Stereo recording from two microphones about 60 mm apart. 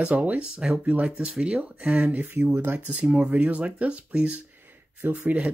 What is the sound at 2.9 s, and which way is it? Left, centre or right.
Speech, centre.